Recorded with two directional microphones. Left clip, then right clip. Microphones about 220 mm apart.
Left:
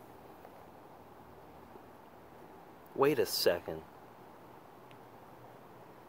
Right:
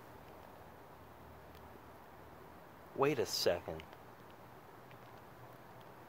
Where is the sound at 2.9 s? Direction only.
15° left (ahead or behind).